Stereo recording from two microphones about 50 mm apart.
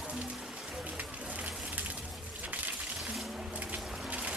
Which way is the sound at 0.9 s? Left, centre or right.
Right.